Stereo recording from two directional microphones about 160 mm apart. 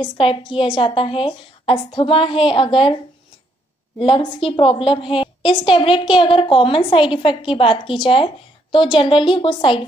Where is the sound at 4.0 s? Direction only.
35° left (ahead or behind).